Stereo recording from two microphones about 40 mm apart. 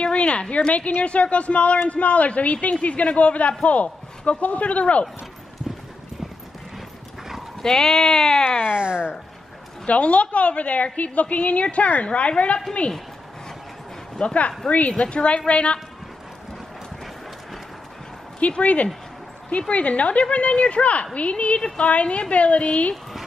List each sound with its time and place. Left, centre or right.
0.0 s a sound: left
0.7 s a woman's voice: left
7.6 s speech: centre
8.7 s speech: right
9.8 s a woman's voice: left
14.2 s a woman's voice: left
18.6 s a woman's voice: left